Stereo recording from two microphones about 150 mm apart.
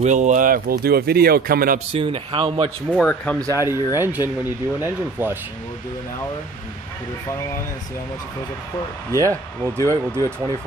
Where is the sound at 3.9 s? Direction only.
15° right (ahead or behind).